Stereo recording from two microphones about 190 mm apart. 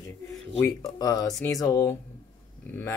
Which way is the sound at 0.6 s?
20° left (ahead or behind).